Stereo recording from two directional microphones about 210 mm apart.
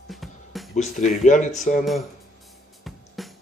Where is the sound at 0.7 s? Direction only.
35° left (ahead or behind).